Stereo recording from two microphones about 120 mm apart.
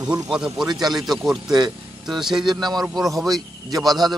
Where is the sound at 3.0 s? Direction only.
Centre (ahead or behind).